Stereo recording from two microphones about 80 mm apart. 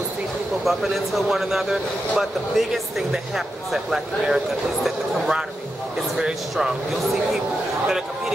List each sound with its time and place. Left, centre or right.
0.7 s speech: centre